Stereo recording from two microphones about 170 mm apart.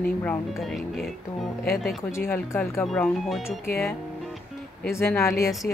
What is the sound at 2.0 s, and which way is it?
Speech, 15° left (ahead or behind).